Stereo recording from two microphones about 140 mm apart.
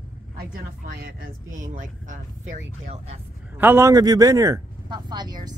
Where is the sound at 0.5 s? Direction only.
90° right; by 2.2 s 65° right (ahead or behind).